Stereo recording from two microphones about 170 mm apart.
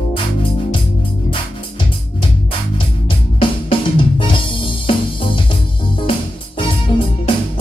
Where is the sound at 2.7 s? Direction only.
30° left (ahead or behind).